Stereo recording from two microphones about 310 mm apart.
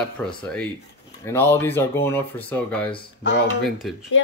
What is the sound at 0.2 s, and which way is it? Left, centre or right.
Speech, centre.